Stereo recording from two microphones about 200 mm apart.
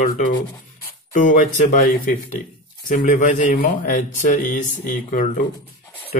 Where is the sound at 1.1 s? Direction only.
40° left (ahead or behind).